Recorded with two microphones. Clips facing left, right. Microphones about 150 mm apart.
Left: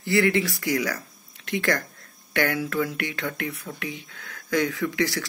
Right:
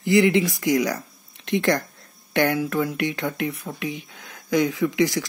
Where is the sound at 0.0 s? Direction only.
15° right (ahead or behind).